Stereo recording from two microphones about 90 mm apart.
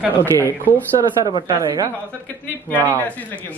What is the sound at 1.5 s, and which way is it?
Speech, 40° right (ahead or behind).